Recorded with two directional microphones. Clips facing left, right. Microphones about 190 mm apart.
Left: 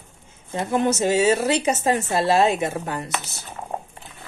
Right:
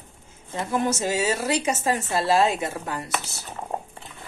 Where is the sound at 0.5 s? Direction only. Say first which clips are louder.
Left 3 dB; 25° left (ahead or behind).